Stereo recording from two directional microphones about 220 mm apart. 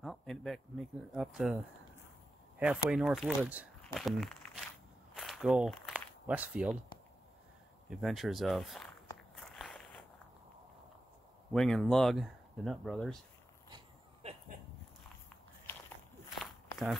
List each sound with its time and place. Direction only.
0.0 s speech: centre (ahead or behind)
2.6 s speech: 5° right (ahead or behind)
5.1 s a sound: centre (ahead or behind)
7.9 s speech: centre (ahead or behind)
9.3 s walk: centre (ahead or behind)
11.5 s speech: centre (ahead or behind)
13.7 s dog: 20° right (ahead or behind)
16.3 s walk: centre (ahead or behind)